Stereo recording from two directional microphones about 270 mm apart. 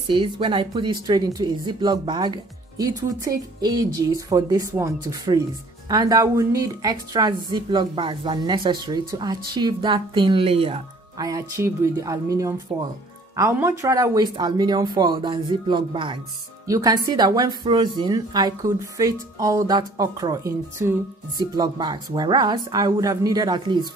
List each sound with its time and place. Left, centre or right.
0.1 s a woman's voice: centre